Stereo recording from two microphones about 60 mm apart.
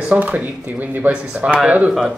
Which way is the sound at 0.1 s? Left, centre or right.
Right.